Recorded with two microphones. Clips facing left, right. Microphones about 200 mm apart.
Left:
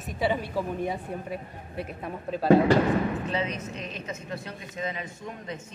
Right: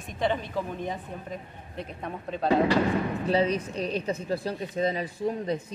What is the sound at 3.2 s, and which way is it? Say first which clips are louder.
A woman's voice: right 6 dB; 35° right (ahead or behind).